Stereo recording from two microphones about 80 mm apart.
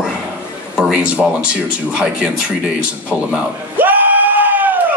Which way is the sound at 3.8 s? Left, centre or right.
Right.